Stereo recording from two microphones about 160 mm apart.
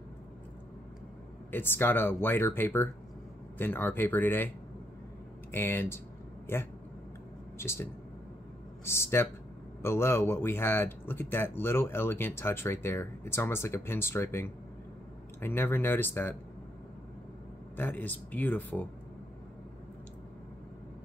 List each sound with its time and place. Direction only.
1.5 s speech: 15° left (ahead or behind)
5.5 s speech: 15° left (ahead or behind)
17.7 s speech: 10° left (ahead or behind)